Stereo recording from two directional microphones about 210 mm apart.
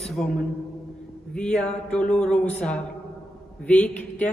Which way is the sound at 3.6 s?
5° left (ahead or behind).